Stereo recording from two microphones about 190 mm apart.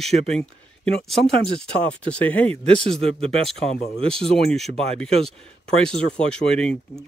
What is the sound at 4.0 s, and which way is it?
Speech, 30° right (ahead or behind).